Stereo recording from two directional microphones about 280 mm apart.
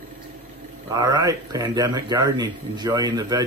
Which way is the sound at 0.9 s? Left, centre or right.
Centre.